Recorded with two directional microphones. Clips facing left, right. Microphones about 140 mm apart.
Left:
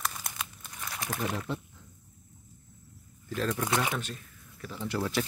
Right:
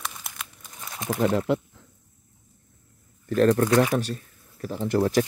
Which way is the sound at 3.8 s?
40° right (ahead or behind).